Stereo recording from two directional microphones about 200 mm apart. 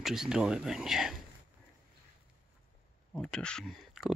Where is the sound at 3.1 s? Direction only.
5° left (ahead or behind).